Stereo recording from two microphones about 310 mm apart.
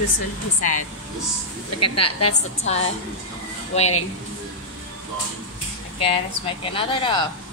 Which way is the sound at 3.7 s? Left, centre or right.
Left.